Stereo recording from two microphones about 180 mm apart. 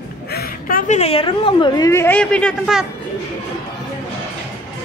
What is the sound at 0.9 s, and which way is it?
A woman's voice, 35° left (ahead or behind).